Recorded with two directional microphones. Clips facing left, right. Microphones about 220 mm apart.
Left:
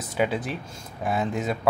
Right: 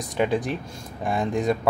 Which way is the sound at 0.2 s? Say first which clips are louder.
Right 2 dB; 5° left (ahead or behind).